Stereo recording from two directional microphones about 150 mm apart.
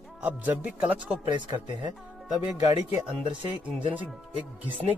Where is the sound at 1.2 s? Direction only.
30° right (ahead or behind).